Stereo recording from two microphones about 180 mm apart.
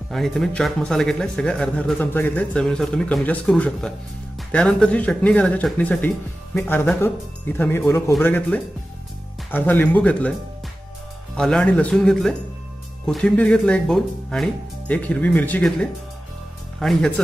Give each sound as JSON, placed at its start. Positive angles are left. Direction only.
{"t": 0.1, "sound": "a man's voice", "side_deg": 0}
{"t": 11.3, "sound": "a man's voice", "side_deg": 5}